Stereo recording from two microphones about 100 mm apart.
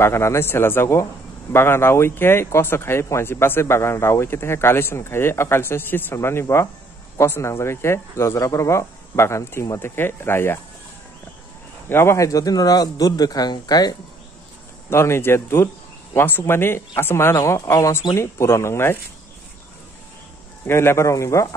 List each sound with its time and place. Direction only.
0.0 s speech: 30° left (ahead or behind)
11.9 s a man's voice: 25° left (ahead or behind); by 13.9 s 40° left (ahead or behind)
14.9 s speech: 25° left (ahead or behind)
17.4 s a man's voice: 35° left (ahead or behind)
20.6 s speech: 25° left (ahead or behind)